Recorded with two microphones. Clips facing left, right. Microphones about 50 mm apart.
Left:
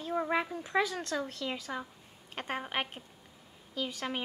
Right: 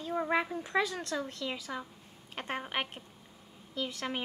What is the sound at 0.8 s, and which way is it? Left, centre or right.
Speech, left.